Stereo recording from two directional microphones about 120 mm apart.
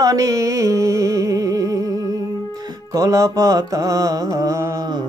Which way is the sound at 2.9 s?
30° right (ahead or behind).